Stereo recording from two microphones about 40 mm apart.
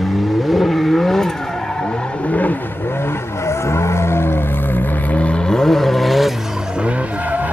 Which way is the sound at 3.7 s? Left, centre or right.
Left.